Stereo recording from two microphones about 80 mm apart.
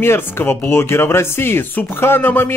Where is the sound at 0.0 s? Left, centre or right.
Left.